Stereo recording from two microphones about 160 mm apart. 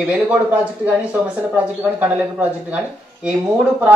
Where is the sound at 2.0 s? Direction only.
10° right (ahead or behind).